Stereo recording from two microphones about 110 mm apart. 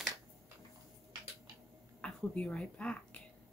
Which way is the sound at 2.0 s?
10° left (ahead or behind).